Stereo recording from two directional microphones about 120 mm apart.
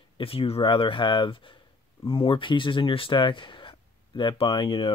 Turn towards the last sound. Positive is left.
turn(degrees=45)  # may be behind; listen again after turning